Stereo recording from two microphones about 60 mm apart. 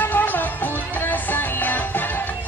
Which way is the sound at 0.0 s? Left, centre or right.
Left.